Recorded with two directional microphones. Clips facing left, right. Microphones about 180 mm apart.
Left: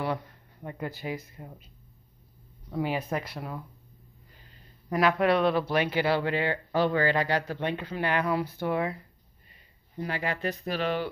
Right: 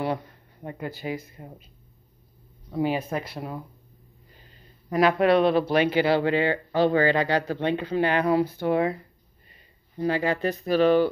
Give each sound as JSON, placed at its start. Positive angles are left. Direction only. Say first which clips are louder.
{"t": 0.0, "sound": "speech", "louder": "right 3 dB", "side_deg": -20}
{"t": 2.8, "sound": "speech", "louder": "right 4 dB", "side_deg": -25}
{"t": 4.9, "sound": "speech", "louder": "right 4 dB", "side_deg": -25}
{"t": 10.0, "sound": "speech", "louder": "right 7 dB", "side_deg": -30}